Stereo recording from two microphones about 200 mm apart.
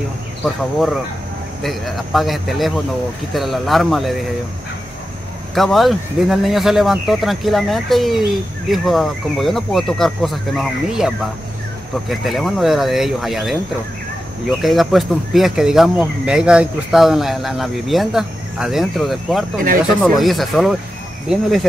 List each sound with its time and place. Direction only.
1.6 s speech: centre (ahead or behind)
5.5 s speech: centre (ahead or behind)
14.6 s speech: centre (ahead or behind)
19.6 s speech: 45° right (ahead or behind)
20.0 s speech: centre (ahead or behind)